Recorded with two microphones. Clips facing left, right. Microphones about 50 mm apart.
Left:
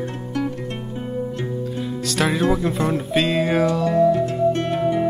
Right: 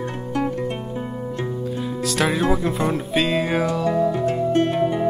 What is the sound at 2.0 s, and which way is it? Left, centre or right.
Music, centre.